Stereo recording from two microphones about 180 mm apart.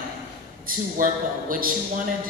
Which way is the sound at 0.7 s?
50° right (ahead or behind).